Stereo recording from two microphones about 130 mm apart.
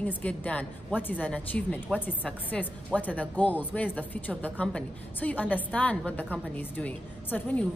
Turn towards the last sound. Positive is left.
turn(degrees=10)  # may be behind; listen again after turning